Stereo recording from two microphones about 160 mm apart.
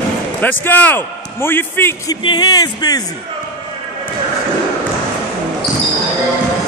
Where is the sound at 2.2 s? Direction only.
25° left (ahead or behind).